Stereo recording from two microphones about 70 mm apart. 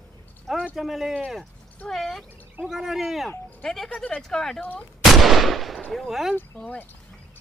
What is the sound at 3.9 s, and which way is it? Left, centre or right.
Speech, left.